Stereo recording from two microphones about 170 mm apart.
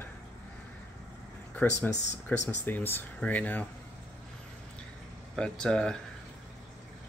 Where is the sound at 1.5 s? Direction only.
5° left (ahead or behind).